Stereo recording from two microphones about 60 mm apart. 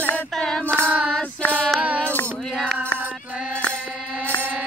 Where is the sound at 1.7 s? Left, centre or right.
Right.